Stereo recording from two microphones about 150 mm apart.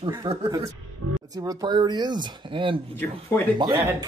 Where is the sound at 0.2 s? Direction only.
40° right (ahead or behind).